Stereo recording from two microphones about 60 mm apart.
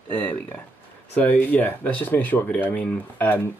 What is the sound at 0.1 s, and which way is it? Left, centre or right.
Speech, left.